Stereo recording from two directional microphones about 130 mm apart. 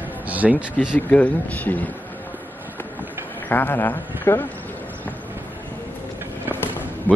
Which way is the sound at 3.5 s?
15° left (ahead or behind).